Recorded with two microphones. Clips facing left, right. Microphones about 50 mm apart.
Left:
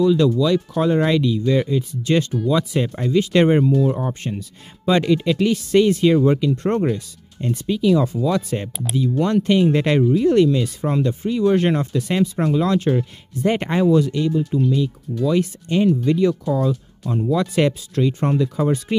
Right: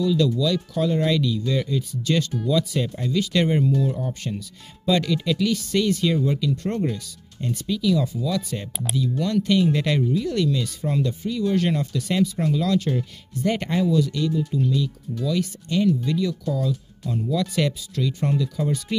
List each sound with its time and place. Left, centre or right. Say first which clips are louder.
0.0 s speech: left 5 dB; left